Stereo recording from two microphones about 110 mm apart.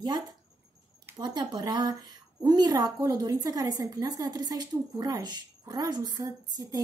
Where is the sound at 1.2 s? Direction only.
40° right (ahead or behind).